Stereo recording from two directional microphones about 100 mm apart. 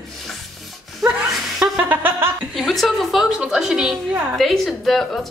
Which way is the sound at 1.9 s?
20° right (ahead or behind).